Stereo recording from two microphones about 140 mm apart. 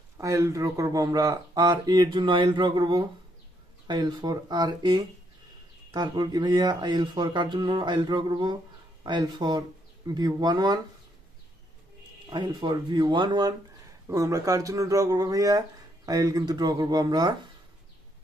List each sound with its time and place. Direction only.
0.2 s speech: 25° right (ahead or behind)
12.3 s speech: 35° right (ahead or behind)